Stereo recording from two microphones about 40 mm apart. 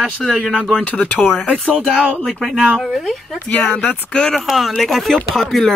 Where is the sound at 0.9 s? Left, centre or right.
Left.